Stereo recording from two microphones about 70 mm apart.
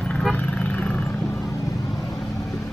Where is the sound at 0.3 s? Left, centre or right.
Left.